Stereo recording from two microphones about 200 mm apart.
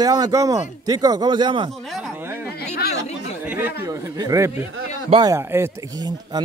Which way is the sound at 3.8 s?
15° right (ahead or behind).